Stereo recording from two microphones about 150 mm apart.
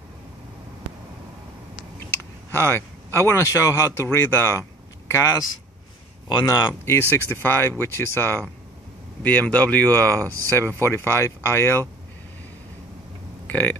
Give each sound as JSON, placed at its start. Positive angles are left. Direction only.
{"t": 2.5, "sound": "speech", "side_deg": 15}
{"t": 6.8, "sound": "speech", "side_deg": 15}
{"t": 13.5, "sound": "speech", "side_deg": 10}